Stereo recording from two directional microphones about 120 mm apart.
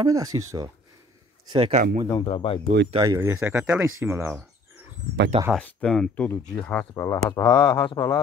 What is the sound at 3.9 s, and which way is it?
Speech, 20° right (ahead or behind).